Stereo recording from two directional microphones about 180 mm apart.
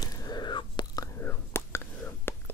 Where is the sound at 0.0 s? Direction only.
20° left (ahead or behind).